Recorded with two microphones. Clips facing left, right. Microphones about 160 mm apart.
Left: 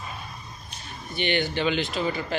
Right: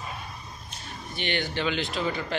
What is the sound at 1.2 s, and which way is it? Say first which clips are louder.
Speech: left 4 dB; centre (ahead or behind).